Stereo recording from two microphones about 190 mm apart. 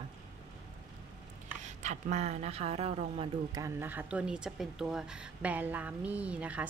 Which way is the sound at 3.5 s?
15° right (ahead or behind).